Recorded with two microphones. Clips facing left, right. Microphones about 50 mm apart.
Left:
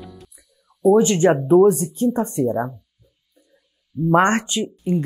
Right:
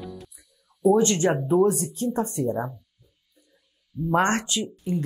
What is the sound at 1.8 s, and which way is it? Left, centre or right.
Speech, centre.